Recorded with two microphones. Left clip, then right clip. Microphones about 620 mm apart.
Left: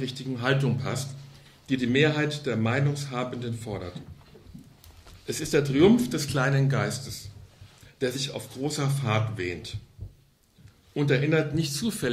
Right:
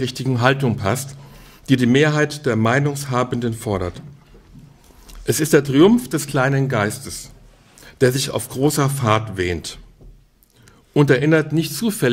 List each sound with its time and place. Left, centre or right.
0.0 s speech: right
5.2 s speech: right
8.0 s speech: right
11.0 s speech: right